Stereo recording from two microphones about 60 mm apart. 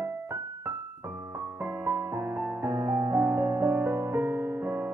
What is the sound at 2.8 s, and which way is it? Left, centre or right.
Music, right.